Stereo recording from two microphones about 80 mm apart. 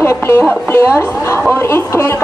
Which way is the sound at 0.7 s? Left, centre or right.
Left.